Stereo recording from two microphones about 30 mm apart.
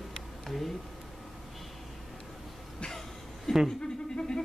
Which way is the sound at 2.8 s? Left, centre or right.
Centre.